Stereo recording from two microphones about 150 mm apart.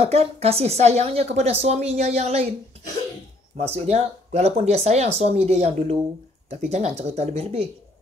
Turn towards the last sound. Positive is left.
turn(degrees=-40)  # may be behind; listen again after turning